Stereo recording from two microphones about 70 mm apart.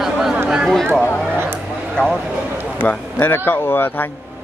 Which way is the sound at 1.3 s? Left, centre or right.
Right.